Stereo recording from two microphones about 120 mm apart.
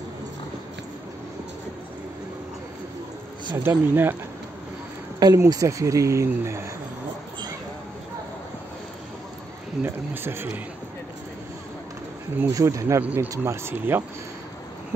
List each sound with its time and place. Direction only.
3.5 s speech: 15° right (ahead or behind)
5.2 s speech: 30° right (ahead or behind)
9.8 s speech: 20° right (ahead or behind)
12.4 s speech: 25° right (ahead or behind)